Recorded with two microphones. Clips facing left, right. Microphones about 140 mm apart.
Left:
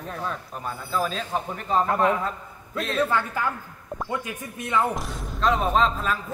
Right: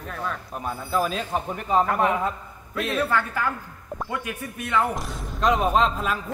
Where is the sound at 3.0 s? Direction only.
20° left (ahead or behind).